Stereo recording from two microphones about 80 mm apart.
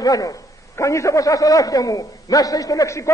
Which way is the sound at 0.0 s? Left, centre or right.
Left.